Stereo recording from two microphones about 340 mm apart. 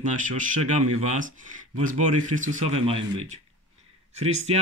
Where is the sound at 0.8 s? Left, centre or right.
Right.